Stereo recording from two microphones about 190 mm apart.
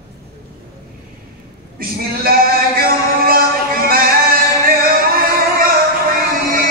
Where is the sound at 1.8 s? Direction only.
50° right (ahead or behind).